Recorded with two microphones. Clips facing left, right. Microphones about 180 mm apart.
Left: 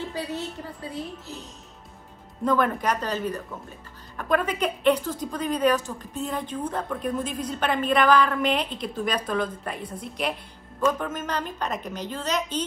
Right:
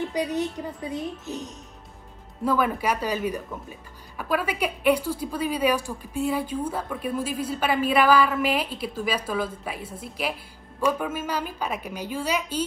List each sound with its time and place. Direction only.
0.0 s a woman's voice: 15° right (ahead or behind)
2.4 s a woman's voice: 5° right (ahead or behind)